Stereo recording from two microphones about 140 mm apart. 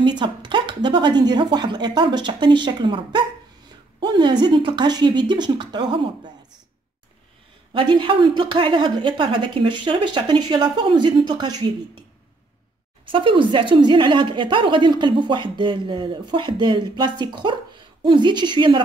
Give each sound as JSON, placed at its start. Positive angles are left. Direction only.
{"t": 0.0, "sound": "speech", "side_deg": -35}
{"t": 7.7, "sound": "speech", "side_deg": -35}
{"t": 13.0, "sound": "speech", "side_deg": -40}